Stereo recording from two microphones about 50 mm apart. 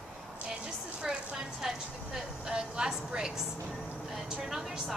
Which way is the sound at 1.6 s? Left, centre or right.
Centre.